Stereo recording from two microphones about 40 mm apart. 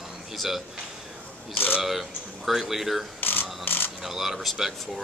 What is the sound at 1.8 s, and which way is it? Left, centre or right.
A man's voice, centre.